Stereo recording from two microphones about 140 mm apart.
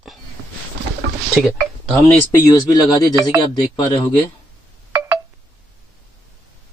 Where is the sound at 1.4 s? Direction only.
Centre (ahead or behind).